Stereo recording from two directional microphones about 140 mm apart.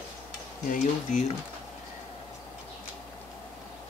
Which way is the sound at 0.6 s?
65° left (ahead or behind).